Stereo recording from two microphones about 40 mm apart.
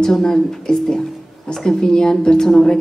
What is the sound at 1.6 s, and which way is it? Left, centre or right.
A man's voice, centre.